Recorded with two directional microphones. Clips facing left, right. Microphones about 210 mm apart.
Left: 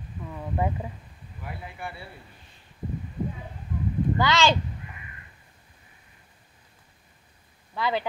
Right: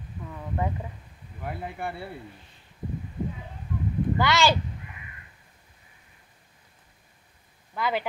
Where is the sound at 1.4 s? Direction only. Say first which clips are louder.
Right 5 dB; 55° right (ahead or behind).